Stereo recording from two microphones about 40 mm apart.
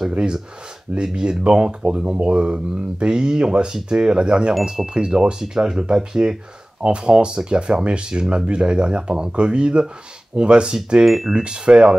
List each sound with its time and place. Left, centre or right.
0.9 s speech: right
11.1 s speech: centre
11.3 s speech: right